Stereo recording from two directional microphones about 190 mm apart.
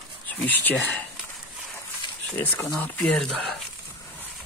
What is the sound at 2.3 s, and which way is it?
Speech, 10° left (ahead or behind).